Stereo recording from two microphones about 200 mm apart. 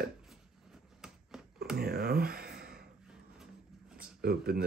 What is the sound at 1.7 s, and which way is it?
Speech, 50° right (ahead or behind).